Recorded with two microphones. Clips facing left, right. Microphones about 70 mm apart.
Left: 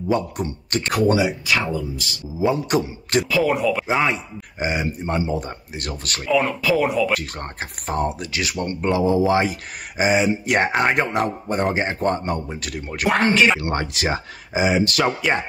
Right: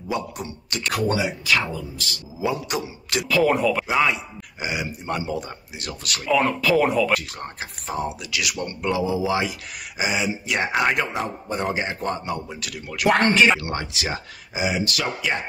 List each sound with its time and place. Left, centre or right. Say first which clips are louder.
0.1 s speech: left 5 dB; left
0.9 s speech: left 5 dB; left
2.7 s speech: left 6 dB; left
3.3 s speech: right 3 dB; centre
3.8 s speech: left 1 dB; left
5.8 s speech: left 1 dB; left
6.2 s speech: left 1 dB; centre
7.2 s speech: left 3 dB; left
10.7 s speech: left 2 dB; left
11.1 s speech: left 5 dB; left
13.1 s speech: even; centre
13.6 s speech: left 4 dB; left